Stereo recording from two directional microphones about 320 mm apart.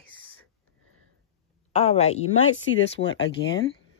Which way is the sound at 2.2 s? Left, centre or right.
Left.